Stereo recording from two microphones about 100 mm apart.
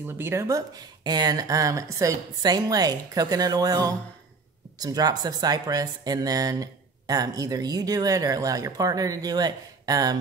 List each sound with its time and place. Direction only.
0.0 s speech: 25° right (ahead or behind)